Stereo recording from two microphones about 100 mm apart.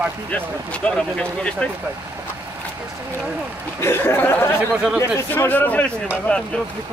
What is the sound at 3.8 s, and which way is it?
Speech, 25° left (ahead or behind).